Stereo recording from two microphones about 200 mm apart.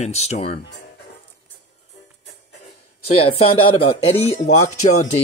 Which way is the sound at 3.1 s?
30° left (ahead or behind).